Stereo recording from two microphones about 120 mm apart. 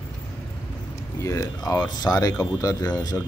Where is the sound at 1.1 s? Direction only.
25° left (ahead or behind).